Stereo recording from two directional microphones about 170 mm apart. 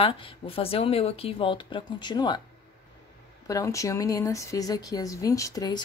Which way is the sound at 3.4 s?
20° left (ahead or behind).